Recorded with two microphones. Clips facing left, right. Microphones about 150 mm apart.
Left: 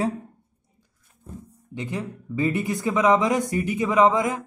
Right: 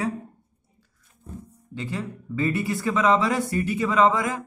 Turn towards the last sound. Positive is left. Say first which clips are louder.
# left 2 dB
turn(degrees=20)  # may be behind; listen again after turning